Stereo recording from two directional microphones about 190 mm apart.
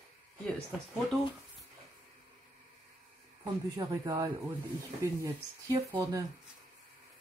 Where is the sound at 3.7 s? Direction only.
20° right (ahead or behind).